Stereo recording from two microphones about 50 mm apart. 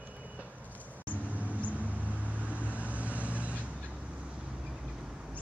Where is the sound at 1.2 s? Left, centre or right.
Right.